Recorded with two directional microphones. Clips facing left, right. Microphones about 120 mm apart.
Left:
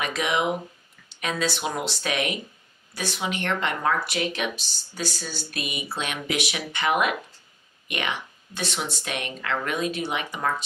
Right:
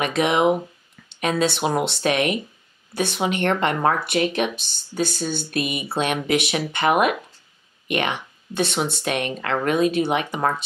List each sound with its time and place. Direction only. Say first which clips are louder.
0.0 s speech: right 6 dB; 55° right (ahead or behind)
1.6 s speech: right 7 dB; 40° right (ahead or behind); by 10.4 s 60° right (ahead or behind)